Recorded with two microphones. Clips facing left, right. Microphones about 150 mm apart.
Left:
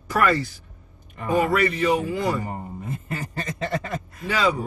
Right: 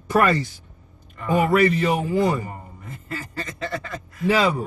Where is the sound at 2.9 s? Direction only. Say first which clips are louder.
Even; 20° left (ahead or behind).